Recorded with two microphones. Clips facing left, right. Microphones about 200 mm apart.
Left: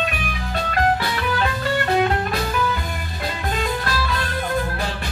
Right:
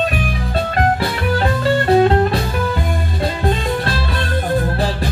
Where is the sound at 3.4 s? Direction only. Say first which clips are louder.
Right 4 dB; 30° right (ahead or behind).